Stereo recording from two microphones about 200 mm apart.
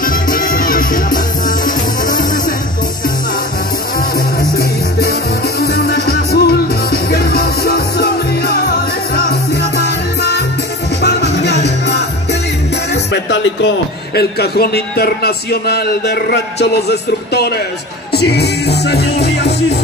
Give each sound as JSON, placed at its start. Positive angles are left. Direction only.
{"t": 0.0, "sound": "music", "side_deg": 45}
{"t": 4.4, "sound": "music", "side_deg": 50}
{"t": 12.9, "sound": "a man's voice", "side_deg": 65}
{"t": 18.1, "sound": "music", "side_deg": 55}